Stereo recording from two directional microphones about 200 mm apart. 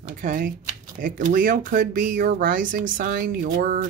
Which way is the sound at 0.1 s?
40° right (ahead or behind).